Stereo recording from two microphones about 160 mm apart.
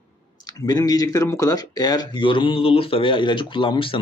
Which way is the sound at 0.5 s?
20° left (ahead or behind).